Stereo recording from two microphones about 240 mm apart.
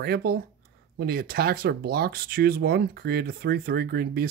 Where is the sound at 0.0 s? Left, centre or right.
Right.